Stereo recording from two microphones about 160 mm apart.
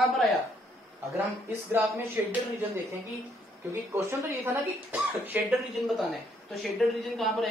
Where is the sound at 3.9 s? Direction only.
15° right (ahead or behind); by 7.4 s centre (ahead or behind).